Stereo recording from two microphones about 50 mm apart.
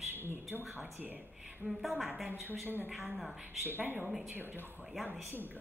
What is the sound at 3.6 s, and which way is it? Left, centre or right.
Speech, right.